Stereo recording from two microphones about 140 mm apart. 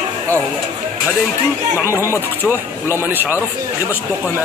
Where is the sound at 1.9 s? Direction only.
20° left (ahead or behind).